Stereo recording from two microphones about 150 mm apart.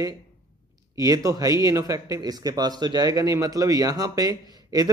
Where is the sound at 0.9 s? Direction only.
20° right (ahead or behind).